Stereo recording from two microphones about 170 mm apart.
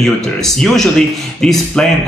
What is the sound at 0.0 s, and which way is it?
Speech, centre (ahead or behind).